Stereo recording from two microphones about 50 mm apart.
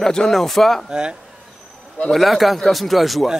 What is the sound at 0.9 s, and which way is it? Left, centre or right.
Speech, centre.